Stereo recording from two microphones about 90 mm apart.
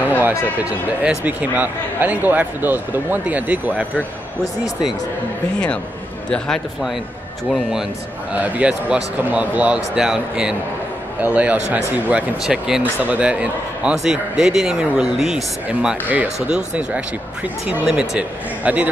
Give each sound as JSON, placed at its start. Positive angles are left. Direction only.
{"t": 1.0, "sound": "speech", "side_deg": -15}
{"t": 6.3, "sound": "a man's voice", "side_deg": 10}
{"t": 8.3, "sound": "a man's voice", "side_deg": -15}